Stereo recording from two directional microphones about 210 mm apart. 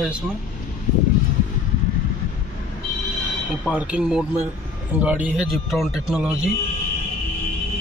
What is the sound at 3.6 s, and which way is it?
Speech, 5° right (ahead or behind).